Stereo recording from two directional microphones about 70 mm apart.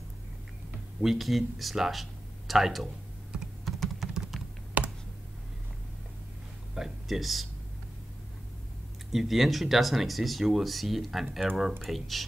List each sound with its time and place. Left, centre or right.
1.0 s speech: centre
3.3 s computer keyboard: centre
4.8 s computer keyboard: right
6.7 s a sound: centre
9.1 s speech: centre